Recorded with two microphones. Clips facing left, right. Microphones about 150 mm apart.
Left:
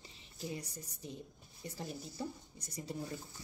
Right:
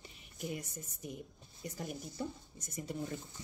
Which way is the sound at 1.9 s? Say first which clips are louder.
Right 1 dB; 20° right (ahead or behind).